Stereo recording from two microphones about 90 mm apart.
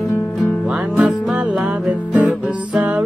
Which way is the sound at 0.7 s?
10° right (ahead or behind).